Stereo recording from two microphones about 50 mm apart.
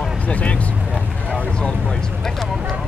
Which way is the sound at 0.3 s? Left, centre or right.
Left.